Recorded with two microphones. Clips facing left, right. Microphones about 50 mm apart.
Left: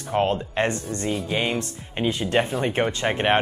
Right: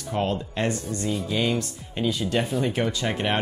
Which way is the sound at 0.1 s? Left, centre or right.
Left.